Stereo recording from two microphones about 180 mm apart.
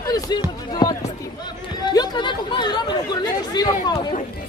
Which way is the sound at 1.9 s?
25° left (ahead or behind).